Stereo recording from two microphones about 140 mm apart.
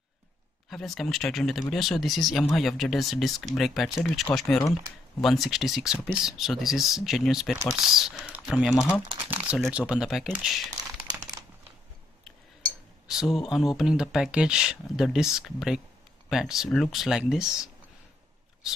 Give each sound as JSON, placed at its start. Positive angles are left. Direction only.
{"t": 0.7, "sound": "speech", "side_deg": 0}
{"t": 8.7, "sound": "speech", "side_deg": 15}
{"t": 9.3, "sound": "a sound", "side_deg": -10}
{"t": 9.7, "sound": "speech", "side_deg": -5}
{"t": 13.1, "sound": "speech", "side_deg": -5}